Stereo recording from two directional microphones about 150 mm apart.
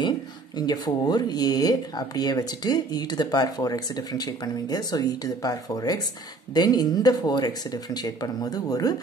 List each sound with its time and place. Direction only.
0.6 s speech: 30° left (ahead or behind)